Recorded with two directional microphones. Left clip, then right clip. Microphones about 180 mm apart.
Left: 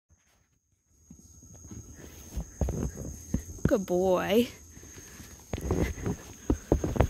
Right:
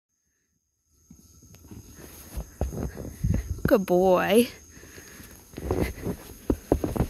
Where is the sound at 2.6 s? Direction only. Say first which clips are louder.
Right 1 dB; 20° right (ahead or behind).